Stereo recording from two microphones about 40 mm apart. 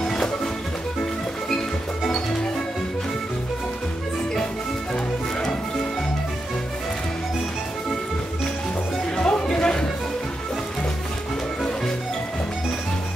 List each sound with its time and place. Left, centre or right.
0.0 s music: centre
5.4 s music: centre
9.1 s music: left